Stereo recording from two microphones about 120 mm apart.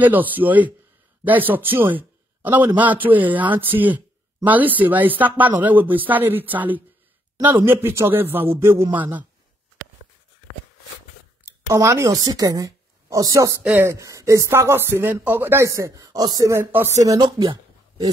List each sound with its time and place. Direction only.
0.0 s speech: 15° right (ahead or behind)
2.0 s a sound: 15° right (ahead or behind)
2.9 s speech: 15° right (ahead or behind)
11.7 s a woman's voice: 25° right (ahead or behind)
13.6 s speech: 15° right (ahead or behind)
17.0 s speech: 35° right (ahead or behind)